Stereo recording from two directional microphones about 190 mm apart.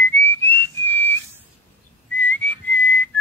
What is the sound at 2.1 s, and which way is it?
Whistling, 10° left (ahead or behind).